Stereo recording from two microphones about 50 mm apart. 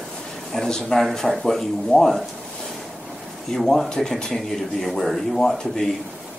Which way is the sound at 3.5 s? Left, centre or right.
Centre.